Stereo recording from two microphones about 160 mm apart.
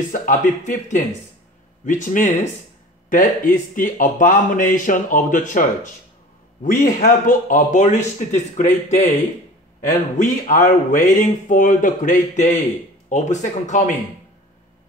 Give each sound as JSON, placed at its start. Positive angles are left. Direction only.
{"t": 0.1, "sound": "speech", "side_deg": 55}